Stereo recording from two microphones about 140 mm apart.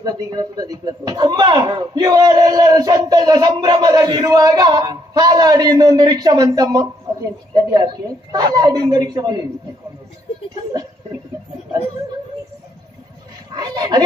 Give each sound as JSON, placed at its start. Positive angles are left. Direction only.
{"t": 0.0, "sound": "speech", "side_deg": -25}
{"t": 10.5, "sound": "a sound", "side_deg": -30}
{"t": 13.5, "sound": "speech", "side_deg": -25}